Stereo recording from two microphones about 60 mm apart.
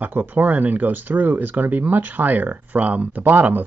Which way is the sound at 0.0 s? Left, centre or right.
Right.